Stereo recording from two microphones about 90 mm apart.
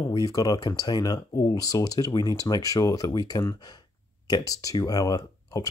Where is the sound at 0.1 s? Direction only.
45° left (ahead or behind).